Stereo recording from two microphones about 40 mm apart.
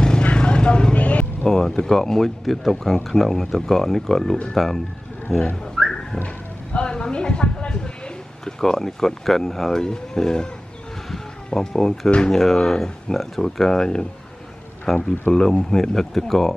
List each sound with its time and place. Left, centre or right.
0.2 s vehicle: left
1.5 s a sound: centre
1.9 s speech: centre
6.2 s a sound: left
8.5 s speech: centre
14.9 s speech: centre